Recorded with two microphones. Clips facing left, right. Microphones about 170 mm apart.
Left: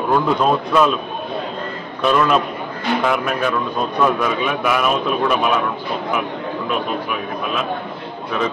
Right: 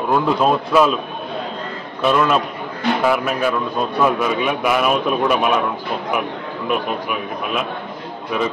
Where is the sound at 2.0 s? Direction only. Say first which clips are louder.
Even; 5° right (ahead or behind).